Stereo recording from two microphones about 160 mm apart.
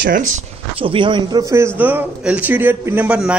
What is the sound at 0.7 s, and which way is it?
A man's voice, 30° right (ahead or behind).